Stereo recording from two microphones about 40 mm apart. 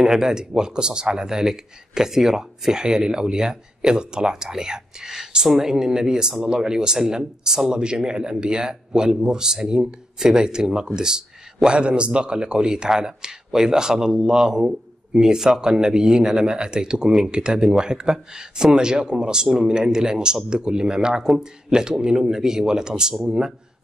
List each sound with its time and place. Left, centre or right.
0.0 s speech: centre